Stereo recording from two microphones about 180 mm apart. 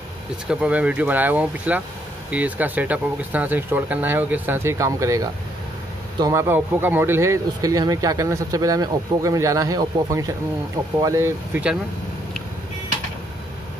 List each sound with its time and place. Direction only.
0.5 s speech: 5° right (ahead or behind)